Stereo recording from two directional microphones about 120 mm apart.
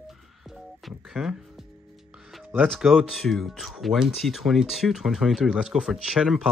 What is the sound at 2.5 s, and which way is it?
Speech, 5° left (ahead or behind).